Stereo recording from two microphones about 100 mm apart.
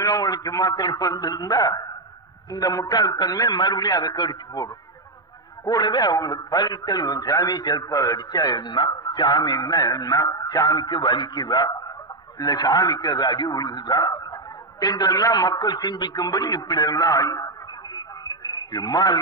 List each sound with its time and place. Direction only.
0.0 s a man's voice: 40° left (ahead or behind)
5.7 s a man's voice: 45° left (ahead or behind)
18.2 s a sound: 40° left (ahead or behind)